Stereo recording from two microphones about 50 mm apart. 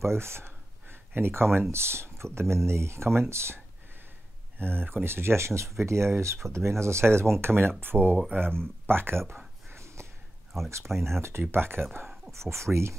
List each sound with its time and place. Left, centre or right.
0.0 s speech: right
4.6 s speech: right
8.4 s speech: centre
8.8 s speech: right
9.7 s a sound: right
11.0 s speech: right
11.5 s speech: right
12.3 s speech: right